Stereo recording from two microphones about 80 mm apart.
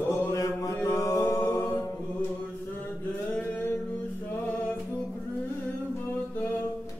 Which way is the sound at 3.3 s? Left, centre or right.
Centre.